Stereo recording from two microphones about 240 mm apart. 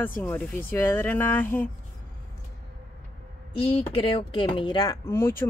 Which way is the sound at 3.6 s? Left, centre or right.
Left.